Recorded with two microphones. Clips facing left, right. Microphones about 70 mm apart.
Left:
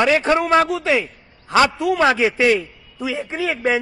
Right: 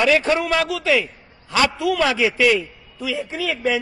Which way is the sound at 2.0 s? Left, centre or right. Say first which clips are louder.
Left 3 dB; left.